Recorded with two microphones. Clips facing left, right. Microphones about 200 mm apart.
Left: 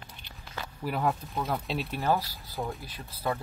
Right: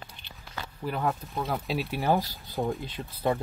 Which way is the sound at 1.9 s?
15° right (ahead or behind).